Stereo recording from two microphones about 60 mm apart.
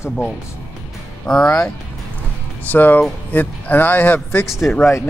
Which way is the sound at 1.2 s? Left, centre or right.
Centre.